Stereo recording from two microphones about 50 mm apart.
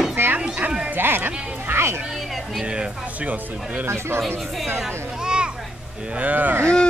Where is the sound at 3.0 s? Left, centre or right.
Right.